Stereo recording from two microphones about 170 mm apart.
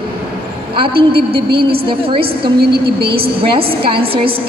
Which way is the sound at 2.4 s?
70° right (ahead or behind).